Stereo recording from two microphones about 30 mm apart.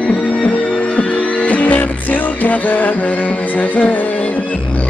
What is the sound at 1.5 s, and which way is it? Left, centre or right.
Music, left.